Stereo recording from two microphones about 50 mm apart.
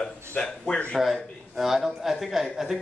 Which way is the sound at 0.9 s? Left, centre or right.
Centre.